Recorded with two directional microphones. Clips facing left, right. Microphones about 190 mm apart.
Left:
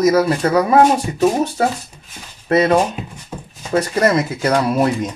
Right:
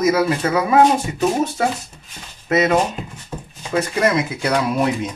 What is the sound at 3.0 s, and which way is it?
Speech, 5° left (ahead or behind).